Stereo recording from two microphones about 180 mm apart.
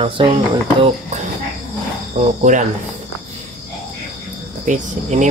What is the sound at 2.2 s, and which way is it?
Speech, 45° right (ahead or behind).